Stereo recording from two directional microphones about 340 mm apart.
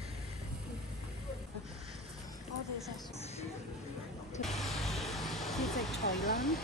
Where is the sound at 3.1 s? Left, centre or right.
Centre.